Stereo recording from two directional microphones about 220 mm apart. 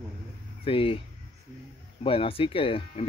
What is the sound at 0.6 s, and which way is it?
Speech, 25° left (ahead or behind).